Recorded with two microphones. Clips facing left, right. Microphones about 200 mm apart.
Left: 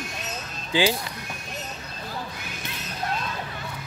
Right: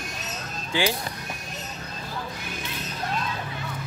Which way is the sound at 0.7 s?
15° left (ahead or behind).